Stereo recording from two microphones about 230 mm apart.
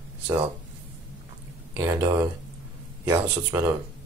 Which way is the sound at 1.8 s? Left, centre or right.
Centre.